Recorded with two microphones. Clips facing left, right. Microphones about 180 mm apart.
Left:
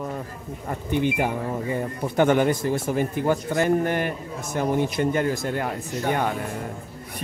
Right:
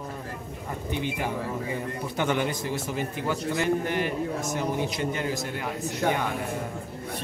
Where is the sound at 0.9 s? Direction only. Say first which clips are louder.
Left 7 dB; 55° left (ahead or behind).